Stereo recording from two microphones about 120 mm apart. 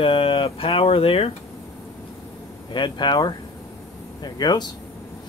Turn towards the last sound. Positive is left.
turn(degrees=35)  # may be behind; listen again after turning